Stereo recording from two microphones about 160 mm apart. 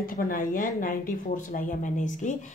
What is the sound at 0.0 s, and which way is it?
Speech, 60° left (ahead or behind).